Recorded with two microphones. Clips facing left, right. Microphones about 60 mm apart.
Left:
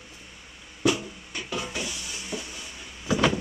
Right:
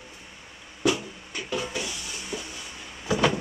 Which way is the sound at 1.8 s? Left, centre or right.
Right.